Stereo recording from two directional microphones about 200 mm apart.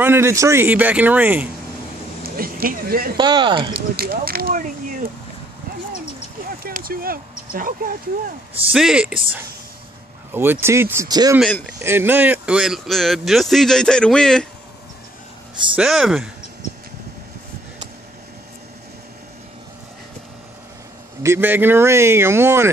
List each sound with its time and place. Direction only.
0.0 s a man's voice: 10° right (ahead or behind)
2.2 s a sound: 50° right (ahead or behind)
3.2 s speech: 20° right (ahead or behind)
3.7 s speech: 50° right (ahead or behind)
6.6 s speech: 45° right (ahead or behind)
8.7 s speech: 5° right (ahead or behind)
10.3 s a man's voice: 10° right (ahead or behind)
15.7 s speech: 5° right (ahead or behind)
21.2 s a man's voice: 10° right (ahead or behind)